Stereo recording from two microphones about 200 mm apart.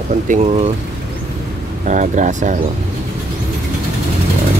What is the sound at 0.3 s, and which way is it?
Speech, 40° right (ahead or behind).